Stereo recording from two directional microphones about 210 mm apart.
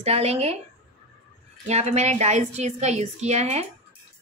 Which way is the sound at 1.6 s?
30° right (ahead or behind).